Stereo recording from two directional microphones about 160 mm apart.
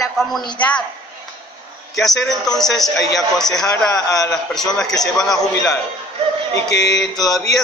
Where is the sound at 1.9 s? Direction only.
Centre (ahead or behind).